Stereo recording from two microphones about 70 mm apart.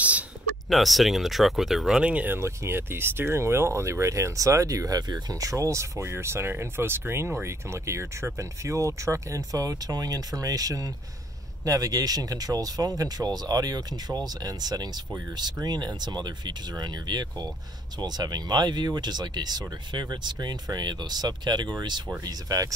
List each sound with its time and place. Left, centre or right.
0.7 s speech: centre
2.2 s speech: right
15.3 s speech: right
18.0 s speech: right
22.2 s speech: right